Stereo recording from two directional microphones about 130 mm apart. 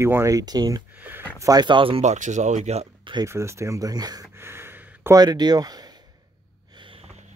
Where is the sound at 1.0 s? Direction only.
15° right (ahead or behind).